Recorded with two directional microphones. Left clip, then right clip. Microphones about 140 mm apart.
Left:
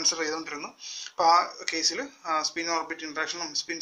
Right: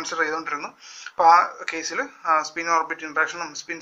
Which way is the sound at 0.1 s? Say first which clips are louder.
Right 6 dB; 55° left (ahead or behind).